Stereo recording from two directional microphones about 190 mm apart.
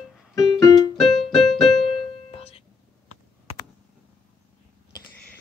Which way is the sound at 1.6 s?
Centre (ahead or behind).